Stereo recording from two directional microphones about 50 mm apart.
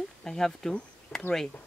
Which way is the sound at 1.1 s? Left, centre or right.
Left.